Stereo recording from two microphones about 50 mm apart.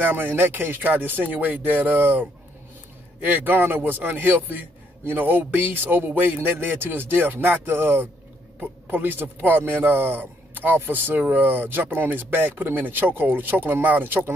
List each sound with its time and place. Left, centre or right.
0.1 s speech: right